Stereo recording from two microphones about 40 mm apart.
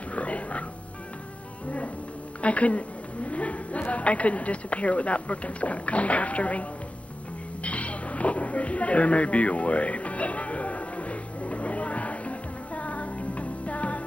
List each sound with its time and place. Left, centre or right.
0.1 s music: left
2.4 s a woman's voice: left
7.6 s a sound: left